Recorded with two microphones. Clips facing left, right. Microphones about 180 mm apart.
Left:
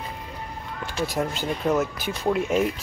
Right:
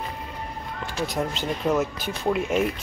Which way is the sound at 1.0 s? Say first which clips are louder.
Left 1 dB; 5° left (ahead or behind).